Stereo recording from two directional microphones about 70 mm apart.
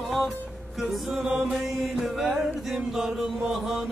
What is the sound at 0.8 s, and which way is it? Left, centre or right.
Chant, centre.